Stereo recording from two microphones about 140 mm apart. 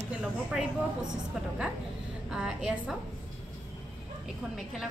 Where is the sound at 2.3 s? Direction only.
5° right (ahead or behind).